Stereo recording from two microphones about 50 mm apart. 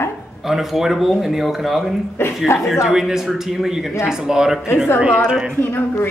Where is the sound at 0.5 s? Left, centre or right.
Centre.